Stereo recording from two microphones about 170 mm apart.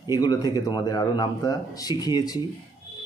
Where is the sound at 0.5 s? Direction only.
25° left (ahead or behind).